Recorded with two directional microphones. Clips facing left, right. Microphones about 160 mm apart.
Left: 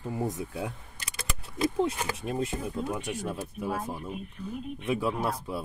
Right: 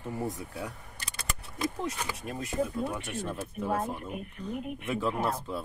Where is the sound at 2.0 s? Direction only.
20° left (ahead or behind).